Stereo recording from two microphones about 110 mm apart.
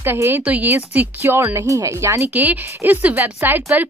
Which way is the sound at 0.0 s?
20° right (ahead or behind).